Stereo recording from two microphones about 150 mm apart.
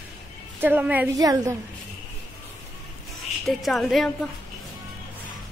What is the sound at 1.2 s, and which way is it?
Speech, 25° right (ahead or behind).